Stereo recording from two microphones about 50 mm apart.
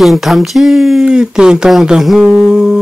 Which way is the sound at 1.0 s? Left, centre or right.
Centre.